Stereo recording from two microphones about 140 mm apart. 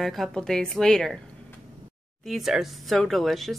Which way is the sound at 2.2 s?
Centre (ahead or behind).